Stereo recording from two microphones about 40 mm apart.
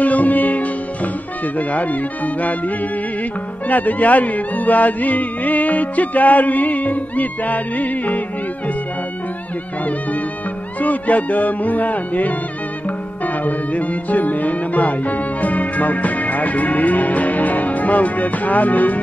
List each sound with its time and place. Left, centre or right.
0.0 s music: left
10.8 s music: left